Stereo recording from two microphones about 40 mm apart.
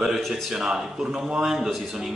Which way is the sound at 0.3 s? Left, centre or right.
Centre.